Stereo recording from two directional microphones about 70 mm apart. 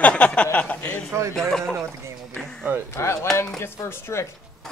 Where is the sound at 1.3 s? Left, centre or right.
Centre.